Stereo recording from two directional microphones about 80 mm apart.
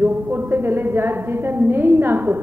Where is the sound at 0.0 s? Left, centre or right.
Right.